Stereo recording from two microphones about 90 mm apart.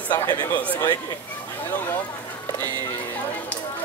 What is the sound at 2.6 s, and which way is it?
Speech, 20° left (ahead or behind).